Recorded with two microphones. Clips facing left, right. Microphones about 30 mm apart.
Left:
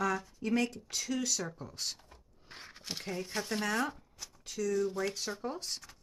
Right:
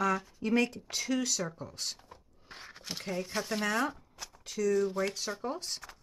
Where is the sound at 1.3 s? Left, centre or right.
Centre.